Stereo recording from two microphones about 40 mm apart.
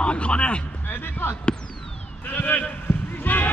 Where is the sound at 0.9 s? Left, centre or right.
Left.